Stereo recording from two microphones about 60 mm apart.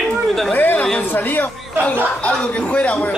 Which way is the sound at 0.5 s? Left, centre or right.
Left.